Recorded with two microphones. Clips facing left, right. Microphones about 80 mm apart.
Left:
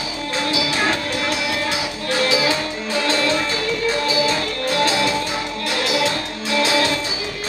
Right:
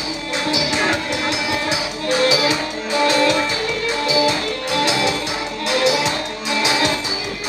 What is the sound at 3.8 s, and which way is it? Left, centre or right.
Music, centre.